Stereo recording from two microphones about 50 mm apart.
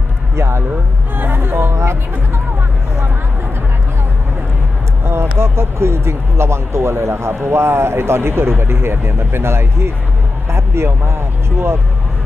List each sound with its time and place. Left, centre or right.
0.4 s a sound: right
1.1 s music: right
5.0 s speech: right